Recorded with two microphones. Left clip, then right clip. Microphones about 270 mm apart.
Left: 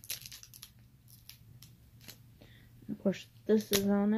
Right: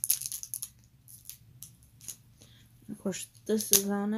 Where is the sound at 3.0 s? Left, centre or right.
Centre.